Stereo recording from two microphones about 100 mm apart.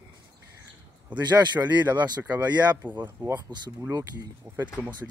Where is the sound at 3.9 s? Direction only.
35° right (ahead or behind).